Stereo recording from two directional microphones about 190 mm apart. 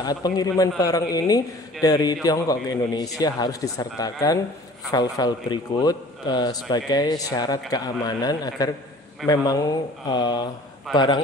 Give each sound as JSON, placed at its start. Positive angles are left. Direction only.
{"t": 0.0, "sound": "a man's voice", "side_deg": 20}